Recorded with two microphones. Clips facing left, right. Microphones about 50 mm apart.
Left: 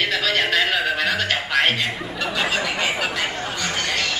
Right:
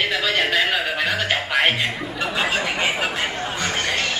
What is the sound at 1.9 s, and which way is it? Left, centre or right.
Chatter, centre.